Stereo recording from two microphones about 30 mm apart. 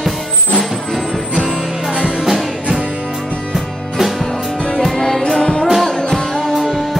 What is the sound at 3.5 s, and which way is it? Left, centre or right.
Music, centre.